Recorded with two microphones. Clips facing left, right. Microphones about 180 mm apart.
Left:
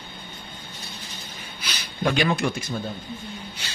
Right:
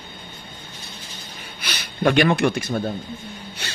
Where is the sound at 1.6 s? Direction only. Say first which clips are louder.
Right 5 dB; 60° right (ahead or behind).